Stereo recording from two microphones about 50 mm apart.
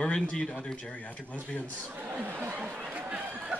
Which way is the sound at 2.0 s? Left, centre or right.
Right.